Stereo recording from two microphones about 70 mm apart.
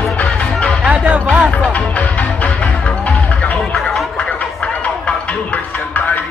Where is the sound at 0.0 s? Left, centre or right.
Centre.